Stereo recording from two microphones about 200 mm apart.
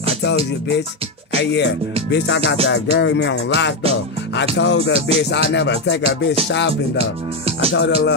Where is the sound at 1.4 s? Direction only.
60° left (ahead or behind).